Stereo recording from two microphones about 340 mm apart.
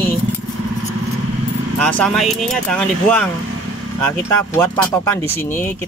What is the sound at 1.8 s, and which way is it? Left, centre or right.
Speech, centre.